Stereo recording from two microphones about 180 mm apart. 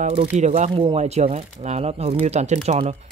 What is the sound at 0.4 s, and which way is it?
Speech, 40° right (ahead or behind).